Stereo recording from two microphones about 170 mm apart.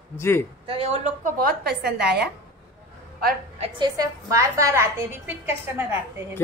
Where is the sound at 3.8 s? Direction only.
20° right (ahead or behind).